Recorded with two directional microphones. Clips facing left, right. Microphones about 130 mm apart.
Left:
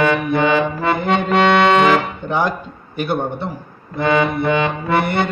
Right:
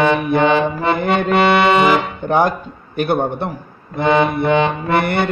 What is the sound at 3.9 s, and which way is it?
Accordion, 20° right (ahead or behind).